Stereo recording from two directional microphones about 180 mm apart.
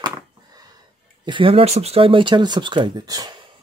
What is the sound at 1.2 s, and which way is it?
Speech, 30° right (ahead or behind).